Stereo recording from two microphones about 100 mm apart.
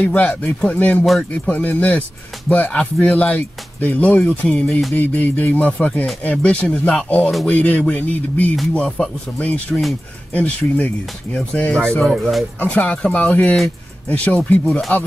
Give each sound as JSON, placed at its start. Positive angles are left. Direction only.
{"t": 0.0, "sound": "speech", "side_deg": 15}
{"t": 1.0, "sound": "speech", "side_deg": 0}
{"t": 1.5, "sound": "speech", "side_deg": 15}
{"t": 12.5, "sound": "speech", "side_deg": 15}